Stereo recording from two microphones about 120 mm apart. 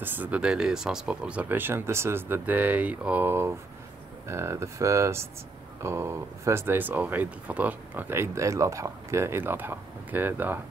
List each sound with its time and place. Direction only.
0.0 s speech: 15° right (ahead or behind)